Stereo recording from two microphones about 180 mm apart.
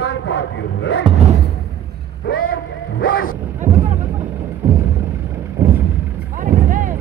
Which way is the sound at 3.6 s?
45° right (ahead or behind).